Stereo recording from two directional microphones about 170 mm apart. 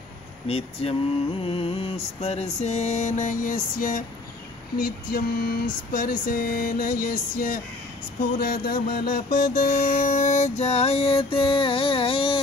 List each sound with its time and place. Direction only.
0.5 s music: 35° left (ahead or behind); by 4.0 s 50° left (ahead or behind)
5.1 s a sound: 60° left (ahead or behind)
8.2 s music: 60° left (ahead or behind); by 12.4 s 30° left (ahead or behind)